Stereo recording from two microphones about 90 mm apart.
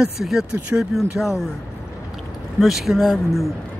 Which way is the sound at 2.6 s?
Centre (ahead or behind).